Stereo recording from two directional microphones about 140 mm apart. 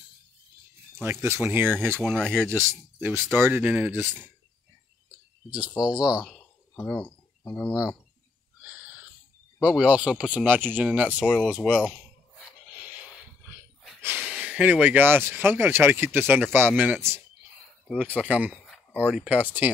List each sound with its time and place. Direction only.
1.0 s speech: 15° right (ahead or behind)
2.0 s speech: 5° left (ahead or behind)
2.4 s speech: 20° right (ahead or behind)
6.1 s speech: centre (ahead or behind)
6.8 s speech: 10° left (ahead or behind)
9.6 s speech: 10° right (ahead or behind)
12.7 s a sound: 10° right (ahead or behind)
14.0 s speech: 10° right (ahead or behind)